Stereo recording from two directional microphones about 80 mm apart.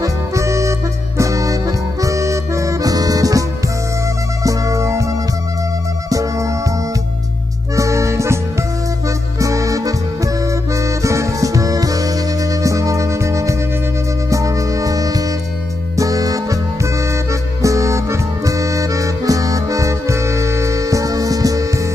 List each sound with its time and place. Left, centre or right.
0.0 s music: right
7.7 s music: right